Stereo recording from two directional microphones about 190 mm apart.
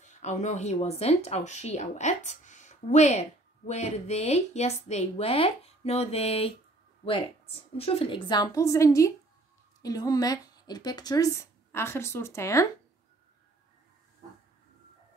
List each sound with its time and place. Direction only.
0.1 s a woman's voice: 40° left (ahead or behind); by 12.6 s 15° left (ahead or behind)